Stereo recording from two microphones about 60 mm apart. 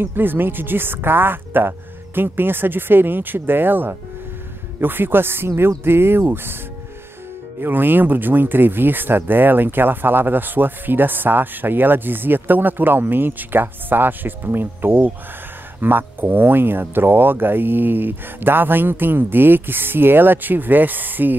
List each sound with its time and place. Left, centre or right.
0.0 s speech: right
7.6 s speech: right